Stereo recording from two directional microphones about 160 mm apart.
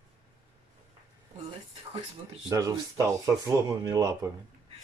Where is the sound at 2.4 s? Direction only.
20° right (ahead or behind).